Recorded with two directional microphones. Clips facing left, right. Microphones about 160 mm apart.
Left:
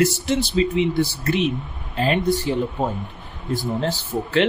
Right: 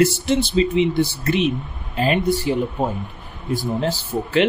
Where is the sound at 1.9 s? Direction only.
10° right (ahead or behind).